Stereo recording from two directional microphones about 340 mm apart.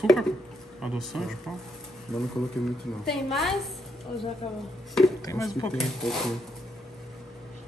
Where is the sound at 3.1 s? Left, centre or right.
Centre.